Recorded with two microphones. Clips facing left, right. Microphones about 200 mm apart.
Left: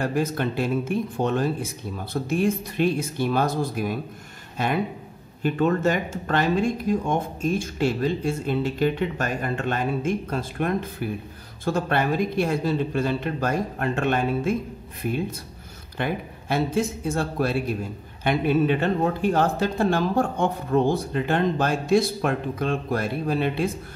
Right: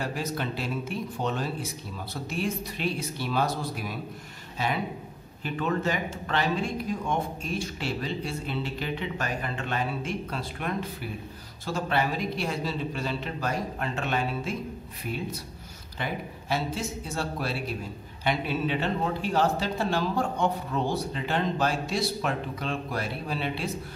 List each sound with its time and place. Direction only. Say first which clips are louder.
0.0 s speech: left 7 dB; 50° left (ahead or behind)
16.0 s speech: left 6 dB; 55° left (ahead or behind)